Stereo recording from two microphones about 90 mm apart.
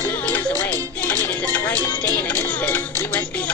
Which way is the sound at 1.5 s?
20° left (ahead or behind).